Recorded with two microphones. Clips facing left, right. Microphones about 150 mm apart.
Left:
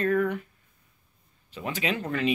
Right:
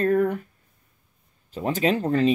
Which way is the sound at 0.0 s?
40° right (ahead or behind).